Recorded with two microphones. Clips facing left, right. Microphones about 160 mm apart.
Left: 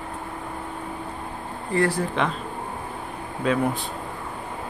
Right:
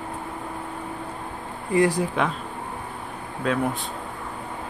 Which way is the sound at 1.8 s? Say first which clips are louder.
Right 2 dB; 15° right (ahead or behind).